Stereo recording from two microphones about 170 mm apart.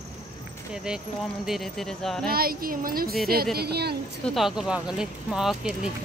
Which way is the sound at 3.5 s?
70° right (ahead or behind).